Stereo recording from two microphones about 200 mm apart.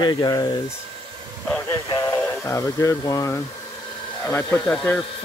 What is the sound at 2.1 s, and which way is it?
Speech, 15° left (ahead or behind).